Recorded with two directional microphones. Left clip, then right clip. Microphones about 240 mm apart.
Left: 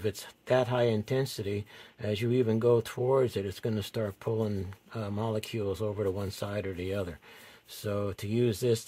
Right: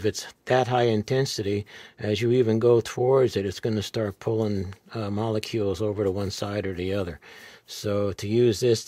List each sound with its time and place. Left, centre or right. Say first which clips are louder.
0.0 s speech: right 7 dB; right